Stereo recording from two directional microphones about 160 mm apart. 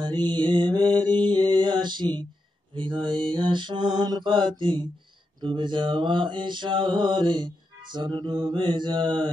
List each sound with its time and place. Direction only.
0.0 s mantra: 30° right (ahead or behind)